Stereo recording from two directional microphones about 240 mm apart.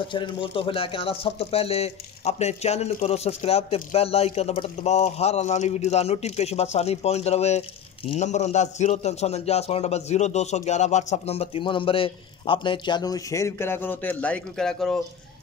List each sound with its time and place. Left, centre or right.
0.1 s speech: centre